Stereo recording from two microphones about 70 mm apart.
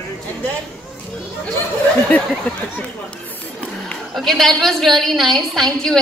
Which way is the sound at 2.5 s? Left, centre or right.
Left.